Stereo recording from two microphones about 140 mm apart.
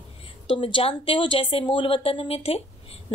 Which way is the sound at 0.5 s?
40° left (ahead or behind).